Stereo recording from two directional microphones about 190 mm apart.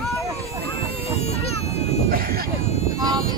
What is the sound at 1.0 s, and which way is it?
Speech, 35° left (ahead or behind).